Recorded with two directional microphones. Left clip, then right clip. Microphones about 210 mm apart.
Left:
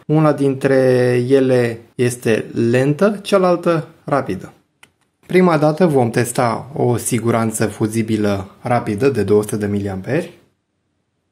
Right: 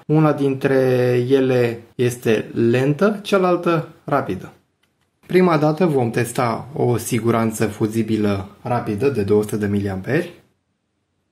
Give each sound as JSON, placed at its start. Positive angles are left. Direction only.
{"t": 0.1, "sound": "speech", "side_deg": 20}
{"t": 8.6, "sound": "speech", "side_deg": 35}